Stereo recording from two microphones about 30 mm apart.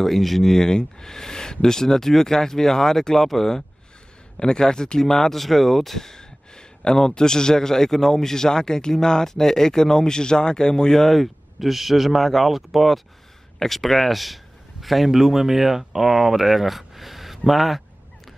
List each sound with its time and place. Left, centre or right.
0.0 s speech: centre
0.6 s speech: left
4.4 s speech: left; by 5.9 s centre
5.9 s a man's voice: centre
10.9 s speech: centre
11.1 s speech: centre
15.0 s speech: centre